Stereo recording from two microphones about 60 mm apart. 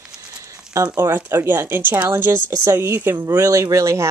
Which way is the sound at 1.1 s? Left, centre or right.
Right.